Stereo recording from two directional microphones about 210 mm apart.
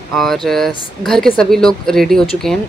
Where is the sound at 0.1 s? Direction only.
Centre (ahead or behind).